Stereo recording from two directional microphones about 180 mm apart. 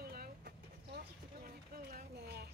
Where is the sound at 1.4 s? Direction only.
55° right (ahead or behind).